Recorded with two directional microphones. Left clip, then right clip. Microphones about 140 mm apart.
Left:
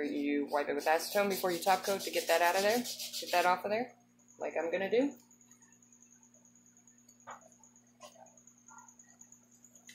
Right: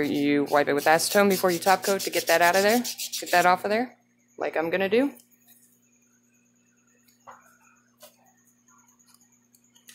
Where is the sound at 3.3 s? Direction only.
65° right (ahead or behind).